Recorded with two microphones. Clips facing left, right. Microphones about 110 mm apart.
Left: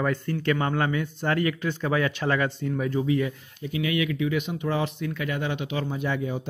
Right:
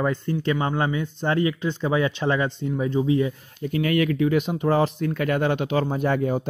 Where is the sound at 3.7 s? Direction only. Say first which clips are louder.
Right 5 dB; 45° right (ahead or behind).